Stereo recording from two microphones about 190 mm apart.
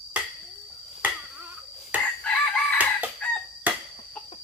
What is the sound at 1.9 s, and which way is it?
Chicken, 10° right (ahead or behind).